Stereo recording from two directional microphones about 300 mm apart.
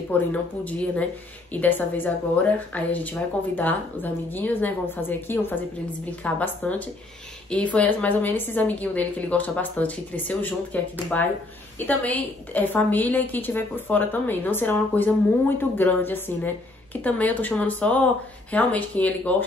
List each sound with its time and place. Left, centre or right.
0.3 s a woman's voice: centre